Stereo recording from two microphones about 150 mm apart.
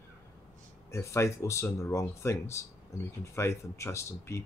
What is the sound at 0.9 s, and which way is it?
Speech, 20° left (ahead or behind).